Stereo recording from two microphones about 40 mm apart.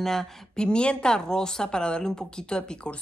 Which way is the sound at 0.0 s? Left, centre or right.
Centre.